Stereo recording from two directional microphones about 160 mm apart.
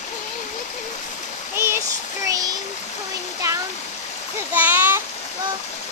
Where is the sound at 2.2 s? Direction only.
20° right (ahead or behind).